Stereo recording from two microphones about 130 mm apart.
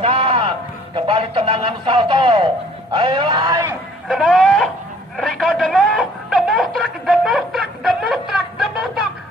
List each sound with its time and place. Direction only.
0.0 s music: 40° right (ahead or behind)
4.1 s a sound: centre (ahead or behind)
5.1 s telephone: centre (ahead or behind)